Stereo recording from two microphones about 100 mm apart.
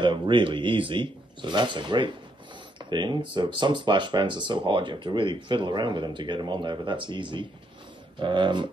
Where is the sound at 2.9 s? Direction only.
50° right (ahead or behind).